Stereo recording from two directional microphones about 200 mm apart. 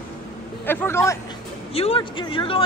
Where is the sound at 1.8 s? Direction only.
25° left (ahead or behind).